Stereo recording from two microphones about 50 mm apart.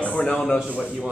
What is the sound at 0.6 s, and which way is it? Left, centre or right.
Speech, right.